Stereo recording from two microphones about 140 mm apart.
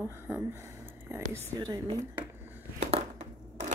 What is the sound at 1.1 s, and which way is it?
Speech, 20° right (ahead or behind).